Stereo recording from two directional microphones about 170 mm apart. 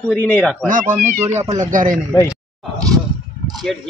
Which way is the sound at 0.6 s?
50° right (ahead or behind).